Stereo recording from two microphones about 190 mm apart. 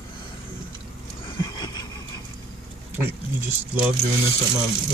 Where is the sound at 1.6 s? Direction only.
20° left (ahead or behind).